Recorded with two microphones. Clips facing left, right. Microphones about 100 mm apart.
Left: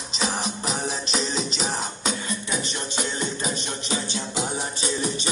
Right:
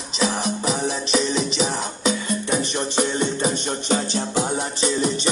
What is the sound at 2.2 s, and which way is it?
Music, 50° right (ahead or behind).